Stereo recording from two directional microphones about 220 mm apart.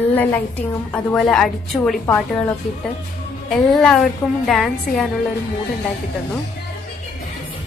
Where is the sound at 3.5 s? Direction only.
Centre (ahead or behind).